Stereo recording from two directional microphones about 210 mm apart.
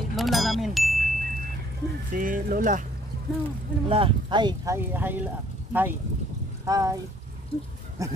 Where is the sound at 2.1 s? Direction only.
40° right (ahead or behind).